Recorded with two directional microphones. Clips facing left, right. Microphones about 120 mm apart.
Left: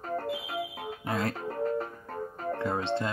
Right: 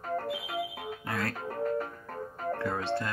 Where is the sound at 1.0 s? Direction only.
25° left (ahead or behind).